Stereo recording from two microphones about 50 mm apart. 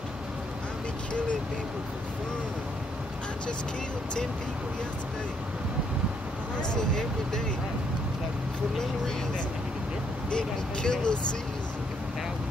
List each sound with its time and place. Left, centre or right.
6.7 s speech: centre
10.3 s speech: centre